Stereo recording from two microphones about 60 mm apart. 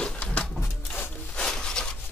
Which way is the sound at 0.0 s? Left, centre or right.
Left.